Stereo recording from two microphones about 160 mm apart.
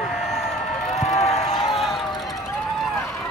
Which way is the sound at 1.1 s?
40° left (ahead or behind).